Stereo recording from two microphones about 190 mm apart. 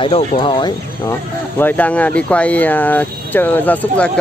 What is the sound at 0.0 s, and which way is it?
Speech, 25° left (ahead or behind).